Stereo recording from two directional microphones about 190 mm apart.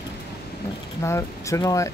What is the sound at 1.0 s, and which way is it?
Speech, 15° left (ahead or behind).